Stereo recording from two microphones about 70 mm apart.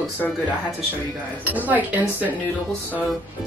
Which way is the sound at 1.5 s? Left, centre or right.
Right.